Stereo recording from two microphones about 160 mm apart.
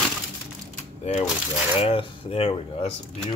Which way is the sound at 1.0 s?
40° left (ahead or behind).